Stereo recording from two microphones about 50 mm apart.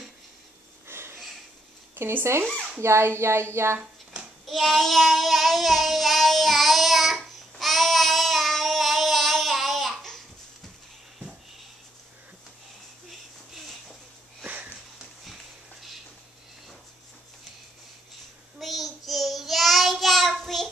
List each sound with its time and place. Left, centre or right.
0.8 s sniff: right
2.0 s speech: right
2.8 s speech: right
4.5 s child singing: centre
13.5 s a sound: centre
14.4 s sniff: right
18.6 s child singing: centre